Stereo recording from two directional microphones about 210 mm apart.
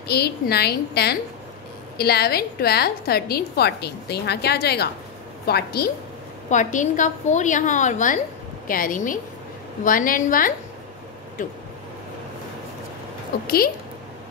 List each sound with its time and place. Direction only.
0.1 s a woman's voice: 50° left (ahead or behind)
6.5 s a woman's voice: 35° left (ahead or behind)
13.3 s a woman's voice: 45° left (ahead or behind)